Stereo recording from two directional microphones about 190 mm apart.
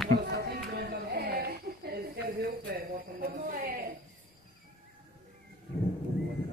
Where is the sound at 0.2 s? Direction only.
60° right (ahead or behind).